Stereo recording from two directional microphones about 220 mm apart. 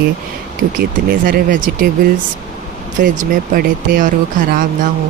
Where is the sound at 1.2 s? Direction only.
40° right (ahead or behind).